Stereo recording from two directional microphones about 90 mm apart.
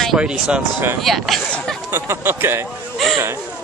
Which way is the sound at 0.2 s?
10° right (ahead or behind).